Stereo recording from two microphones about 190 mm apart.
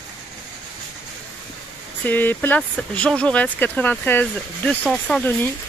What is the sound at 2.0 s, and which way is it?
Speech, 10° left (ahead or behind).